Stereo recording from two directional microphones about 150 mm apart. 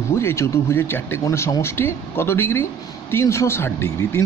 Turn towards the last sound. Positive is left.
turn(degrees=15)  # may be behind; listen again after turning